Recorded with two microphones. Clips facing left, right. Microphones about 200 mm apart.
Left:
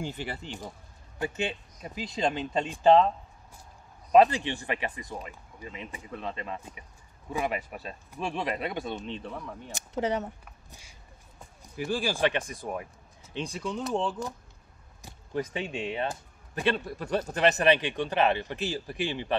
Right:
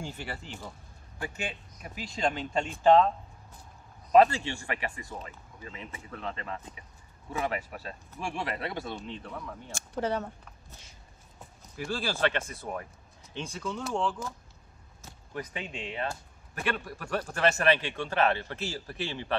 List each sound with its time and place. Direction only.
0.0 s speech: 20° left (ahead or behind)
4.1 s speech: 15° left (ahead or behind)
15.3 s speech: 25° left (ahead or behind)